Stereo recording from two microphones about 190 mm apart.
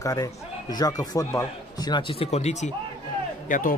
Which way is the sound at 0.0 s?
15° left (ahead or behind).